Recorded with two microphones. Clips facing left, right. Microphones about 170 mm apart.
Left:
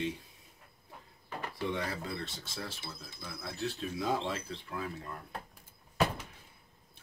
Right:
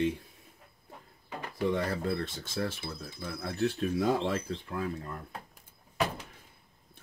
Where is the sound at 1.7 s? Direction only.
55° right (ahead or behind).